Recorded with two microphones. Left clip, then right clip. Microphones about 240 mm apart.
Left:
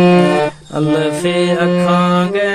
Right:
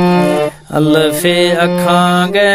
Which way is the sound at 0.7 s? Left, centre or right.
Right.